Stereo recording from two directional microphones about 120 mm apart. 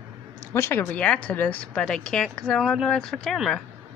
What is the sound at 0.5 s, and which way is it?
Speech, 20° left (ahead or behind).